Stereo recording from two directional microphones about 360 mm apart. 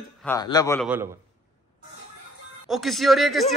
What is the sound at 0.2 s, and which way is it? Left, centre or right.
Speech, centre.